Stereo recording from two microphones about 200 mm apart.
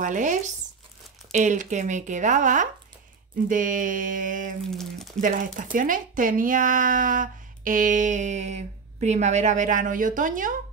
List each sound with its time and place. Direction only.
0.0 s speech: 40° right (ahead or behind)
4.6 s speech: centre (ahead or behind)
5.2 s speech: 40° right (ahead or behind)